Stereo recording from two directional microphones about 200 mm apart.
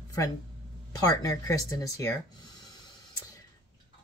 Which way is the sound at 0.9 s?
15° left (ahead or behind).